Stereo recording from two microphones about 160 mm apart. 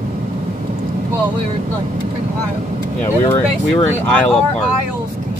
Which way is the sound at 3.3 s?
15° left (ahead or behind).